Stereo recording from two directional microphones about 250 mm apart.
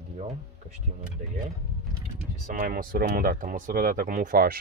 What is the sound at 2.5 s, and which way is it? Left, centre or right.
Speech, right.